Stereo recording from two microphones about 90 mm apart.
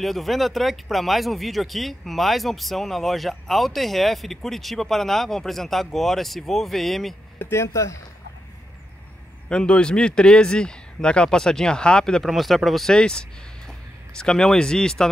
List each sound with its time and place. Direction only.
0.0 s speech: centre (ahead or behind)
7.3 s speech: 25° left (ahead or behind)
9.5 s speech: 10° left (ahead or behind)